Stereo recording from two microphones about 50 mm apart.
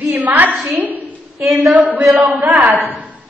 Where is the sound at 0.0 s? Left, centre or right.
Right.